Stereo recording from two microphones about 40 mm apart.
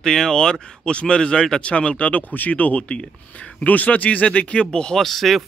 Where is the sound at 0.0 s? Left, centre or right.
Centre.